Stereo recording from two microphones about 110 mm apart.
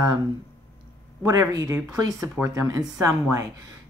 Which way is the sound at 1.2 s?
30° right (ahead or behind).